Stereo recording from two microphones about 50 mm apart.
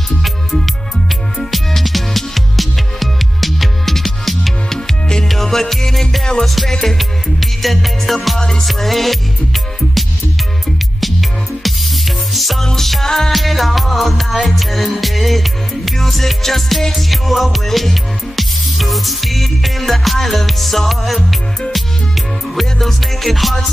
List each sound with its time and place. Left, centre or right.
0.2 s music: centre
4.7 s music: centre
8.4 s music: centre
8.6 s music: centre